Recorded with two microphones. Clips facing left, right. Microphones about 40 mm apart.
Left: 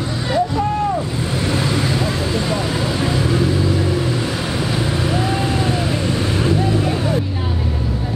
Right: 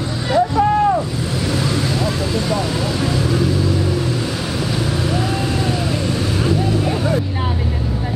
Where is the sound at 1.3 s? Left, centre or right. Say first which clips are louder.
Left 1 dB; left; by 7.2 s centre.